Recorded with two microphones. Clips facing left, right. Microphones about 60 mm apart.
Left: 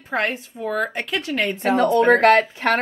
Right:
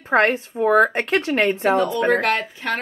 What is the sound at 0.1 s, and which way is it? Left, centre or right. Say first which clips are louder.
A woman's voice: right 6 dB; right.